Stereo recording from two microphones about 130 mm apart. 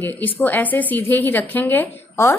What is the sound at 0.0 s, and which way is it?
A woman's voice, 15° left (ahead or behind).